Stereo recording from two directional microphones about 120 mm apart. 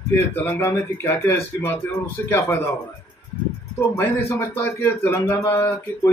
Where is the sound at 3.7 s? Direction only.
25° left (ahead or behind).